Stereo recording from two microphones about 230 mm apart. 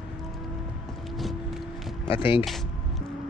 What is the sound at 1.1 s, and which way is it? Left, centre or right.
Music, centre.